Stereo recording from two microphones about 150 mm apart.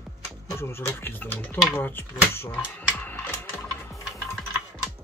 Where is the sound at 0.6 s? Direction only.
15° left (ahead or behind).